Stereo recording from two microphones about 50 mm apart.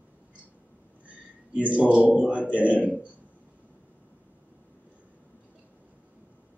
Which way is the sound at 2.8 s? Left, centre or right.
Right.